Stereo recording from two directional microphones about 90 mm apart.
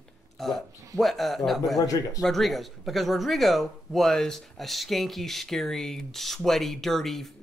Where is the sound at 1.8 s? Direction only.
40° left (ahead or behind).